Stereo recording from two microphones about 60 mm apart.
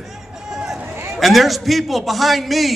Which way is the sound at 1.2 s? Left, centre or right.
Centre.